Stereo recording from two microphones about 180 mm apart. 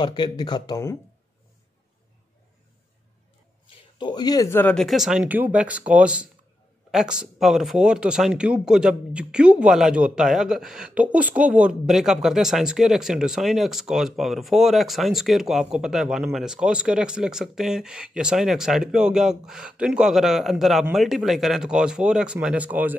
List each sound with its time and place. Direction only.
0.0 s speech: 25° left (ahead or behind)
3.6 s speech: 25° left (ahead or behind); by 22.9 s 10° right (ahead or behind)